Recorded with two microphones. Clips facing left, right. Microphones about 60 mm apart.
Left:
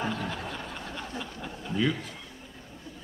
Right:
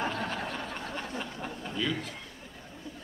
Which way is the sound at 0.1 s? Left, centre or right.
Right.